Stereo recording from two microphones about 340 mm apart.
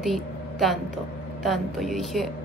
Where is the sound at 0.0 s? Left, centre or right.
Centre.